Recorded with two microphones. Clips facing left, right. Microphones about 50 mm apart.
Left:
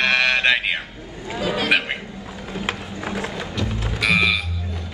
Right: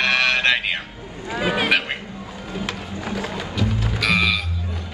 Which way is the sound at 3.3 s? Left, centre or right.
Centre.